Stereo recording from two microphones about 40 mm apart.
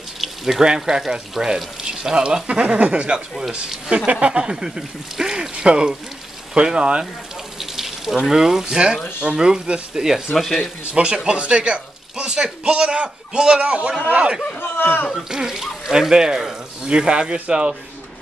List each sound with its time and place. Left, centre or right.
0.2 s water: centre
0.7 s a man's voice: centre; by 3.2 s right
4.3 s a man's voice: centre
7.5 s a man's voice: centre
10.3 s speech: centre
10.9 s a man's voice: right
14.6 s speech: left
15.2 s speech: centre